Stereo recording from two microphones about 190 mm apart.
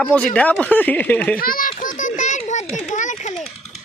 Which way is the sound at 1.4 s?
50° left (ahead or behind).